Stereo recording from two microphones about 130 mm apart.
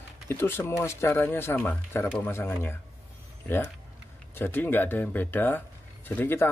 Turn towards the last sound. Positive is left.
turn(degrees=15)  # may be behind; listen again after turning